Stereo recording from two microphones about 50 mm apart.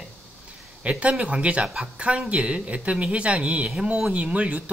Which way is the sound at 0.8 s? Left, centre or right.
Right.